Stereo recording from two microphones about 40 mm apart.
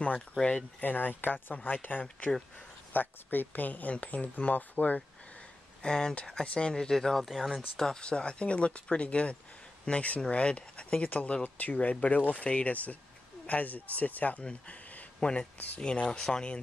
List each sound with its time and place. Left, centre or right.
0.0 s speech: left
0.7 s speech: left
2.9 s speech: left
5.8 s speech: centre
8.0 s speech: left
11.1 s speech: left
14.4 s a sound: left
15.1 s speech: left